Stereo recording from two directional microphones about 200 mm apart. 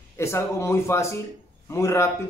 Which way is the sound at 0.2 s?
15° left (ahead or behind).